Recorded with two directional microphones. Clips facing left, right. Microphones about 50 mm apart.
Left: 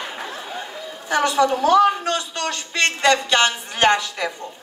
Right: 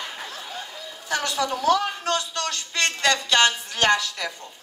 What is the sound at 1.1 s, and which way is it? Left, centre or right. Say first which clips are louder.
A man's voice: left 7 dB; left.